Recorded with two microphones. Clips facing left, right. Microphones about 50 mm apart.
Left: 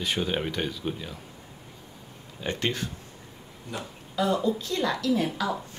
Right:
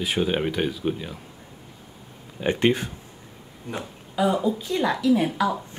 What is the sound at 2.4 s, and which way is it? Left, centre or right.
Speech, right.